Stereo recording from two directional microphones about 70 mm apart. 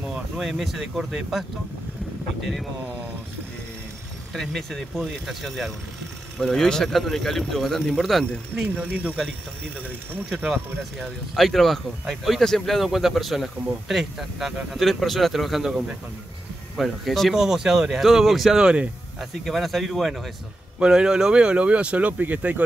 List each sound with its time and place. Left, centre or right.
0.1 s speech: centre
4.3 s speech: centre
8.6 s speech: right
10.4 s speech: centre
16.7 s speech: centre
18.6 s speech: centre
19.4 s speech: centre
20.8 s speech: centre